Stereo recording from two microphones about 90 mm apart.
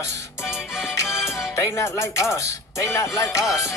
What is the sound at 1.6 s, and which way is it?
Speech, 30° left (ahead or behind).